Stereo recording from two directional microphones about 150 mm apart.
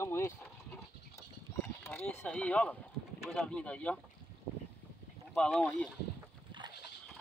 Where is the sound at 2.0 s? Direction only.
10° left (ahead or behind).